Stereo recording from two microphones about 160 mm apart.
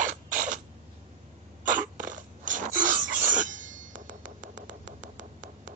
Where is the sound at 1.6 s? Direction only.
55° right (ahead or behind).